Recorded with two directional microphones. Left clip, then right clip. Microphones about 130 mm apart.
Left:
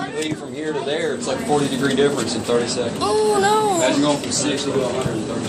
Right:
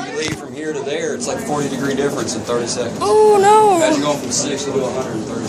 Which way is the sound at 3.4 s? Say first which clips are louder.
Right 7 dB; 40° right (ahead or behind).